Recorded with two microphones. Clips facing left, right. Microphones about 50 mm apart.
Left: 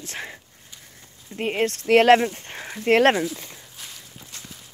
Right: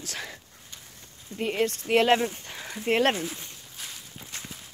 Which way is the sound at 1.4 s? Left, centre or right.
Left.